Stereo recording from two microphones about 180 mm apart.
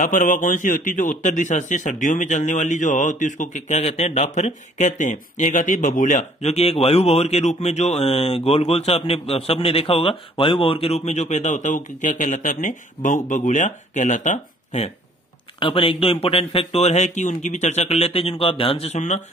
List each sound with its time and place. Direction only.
0.0 s speech: 45° left (ahead or behind)
15.6 s speech: 30° left (ahead or behind)